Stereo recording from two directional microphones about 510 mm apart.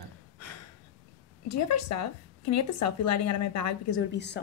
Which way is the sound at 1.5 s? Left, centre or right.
Left.